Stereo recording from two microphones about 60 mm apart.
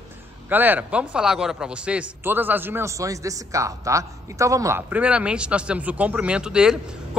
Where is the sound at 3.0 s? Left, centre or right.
Right.